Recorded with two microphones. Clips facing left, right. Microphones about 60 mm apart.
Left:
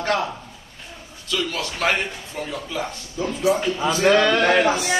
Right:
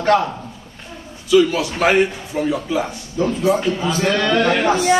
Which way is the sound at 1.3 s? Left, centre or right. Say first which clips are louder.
Right 11 dB; centre.